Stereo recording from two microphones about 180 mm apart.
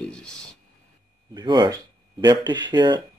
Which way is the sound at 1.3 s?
25° right (ahead or behind).